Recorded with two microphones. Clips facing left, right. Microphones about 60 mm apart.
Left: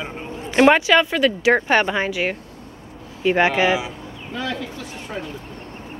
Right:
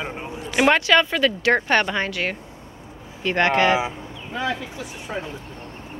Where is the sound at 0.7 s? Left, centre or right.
Centre.